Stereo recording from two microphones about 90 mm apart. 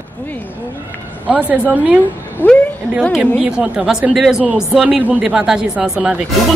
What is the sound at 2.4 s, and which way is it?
Speech, 20° left (ahead or behind).